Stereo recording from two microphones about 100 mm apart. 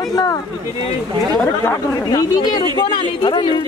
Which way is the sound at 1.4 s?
20° left (ahead or behind).